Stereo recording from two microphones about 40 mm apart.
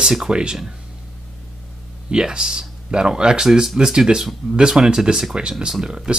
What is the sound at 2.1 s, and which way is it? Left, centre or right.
Speech, right.